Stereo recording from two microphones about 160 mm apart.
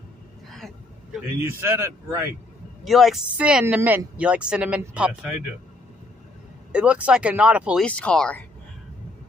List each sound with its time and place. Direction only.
1.4 s speech: 15° right (ahead or behind)
2.8 s speech: centre (ahead or behind)
6.7 s speech: 5° right (ahead or behind)
7.8 s speech: 5° left (ahead or behind)